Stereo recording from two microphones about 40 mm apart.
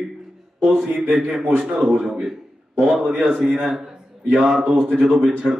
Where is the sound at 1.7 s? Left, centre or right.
Centre.